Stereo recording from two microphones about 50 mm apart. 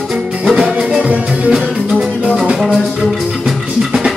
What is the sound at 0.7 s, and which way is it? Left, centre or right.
Music, right.